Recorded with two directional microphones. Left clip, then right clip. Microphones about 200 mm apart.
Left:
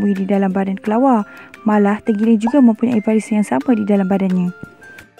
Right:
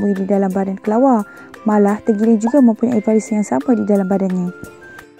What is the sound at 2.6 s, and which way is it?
Speech, 35° left (ahead or behind).